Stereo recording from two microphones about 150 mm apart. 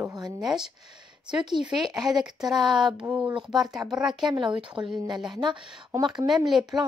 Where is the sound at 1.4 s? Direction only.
30° right (ahead or behind).